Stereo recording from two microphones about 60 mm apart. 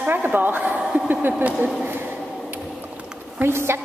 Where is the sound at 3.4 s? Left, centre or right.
Right.